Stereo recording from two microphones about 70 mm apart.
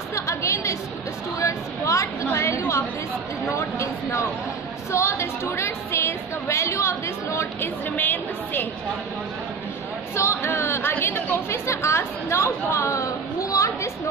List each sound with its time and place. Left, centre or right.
0.1 s chatter: left
1.4 s a sound: left
2.3 s a woman's voice: left
7.9 s a woman's voice: left
10.1 s a woman's voice: left